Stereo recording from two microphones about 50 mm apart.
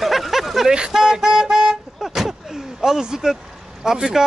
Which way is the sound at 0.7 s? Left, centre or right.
Centre.